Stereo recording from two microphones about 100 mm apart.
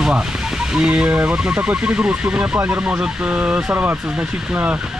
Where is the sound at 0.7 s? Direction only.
10° right (ahead or behind).